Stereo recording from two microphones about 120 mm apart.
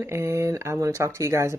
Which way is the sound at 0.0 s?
25° right (ahead or behind).